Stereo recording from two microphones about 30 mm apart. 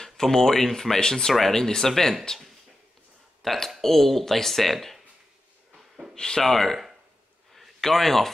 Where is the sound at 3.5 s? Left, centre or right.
Centre.